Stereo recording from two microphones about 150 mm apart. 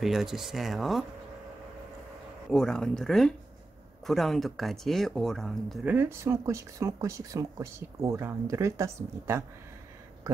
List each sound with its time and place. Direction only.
0.0 s speech: centre (ahead or behind)
2.5 s speech: 5° left (ahead or behind)
5.9 s speech: 15° right (ahead or behind)